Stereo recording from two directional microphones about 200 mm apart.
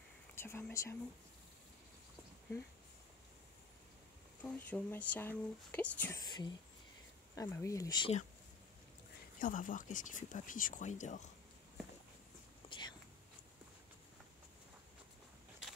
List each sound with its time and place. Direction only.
0.4 s speech: 10° left (ahead or behind)
4.4 s speech: 10° left (ahead or behind)
6.2 s speech: 20° left (ahead or behind)
9.4 s speech: 40° left (ahead or behind)
12.6 s whispering: 25° left (ahead or behind)